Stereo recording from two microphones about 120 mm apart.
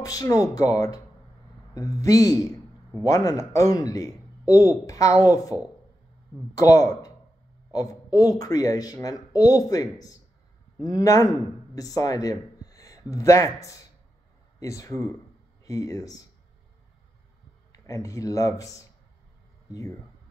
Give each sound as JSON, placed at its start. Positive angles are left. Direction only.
{"t": 0.0, "sound": "a man's voice", "side_deg": 30}
{"t": 17.7, "sound": "a man's voice", "side_deg": 25}